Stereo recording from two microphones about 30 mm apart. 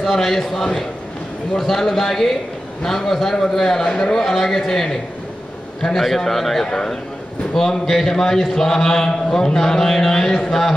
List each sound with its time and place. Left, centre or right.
0.0 s a man's voice: centre
5.9 s a man's voice: centre
6.6 s a man's voice: left